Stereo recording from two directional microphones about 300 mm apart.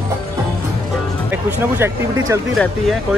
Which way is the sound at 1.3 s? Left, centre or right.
Centre.